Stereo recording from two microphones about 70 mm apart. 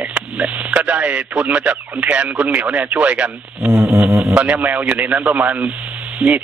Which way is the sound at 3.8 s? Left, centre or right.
Centre.